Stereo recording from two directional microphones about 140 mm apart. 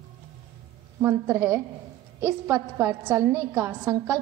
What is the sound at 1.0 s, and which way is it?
A woman's voice, 15° right (ahead or behind).